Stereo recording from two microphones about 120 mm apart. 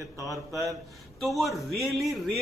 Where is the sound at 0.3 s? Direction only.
25° right (ahead or behind).